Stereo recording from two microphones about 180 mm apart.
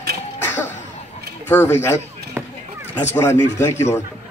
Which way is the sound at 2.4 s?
15° right (ahead or behind).